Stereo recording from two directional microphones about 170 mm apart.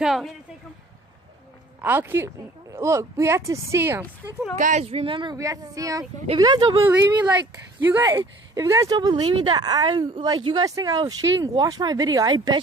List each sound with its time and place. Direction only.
0.0 s a woman's voice: centre (ahead or behind)
1.8 s speech: 10° right (ahead or behind)
4.6 s speech: 45° right (ahead or behind); by 6.9 s 30° right (ahead or behind)
7.8 s speech: 10° right (ahead or behind)